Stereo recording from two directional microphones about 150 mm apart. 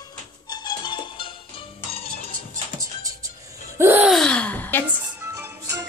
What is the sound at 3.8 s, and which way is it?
Gasp, 15° right (ahead or behind).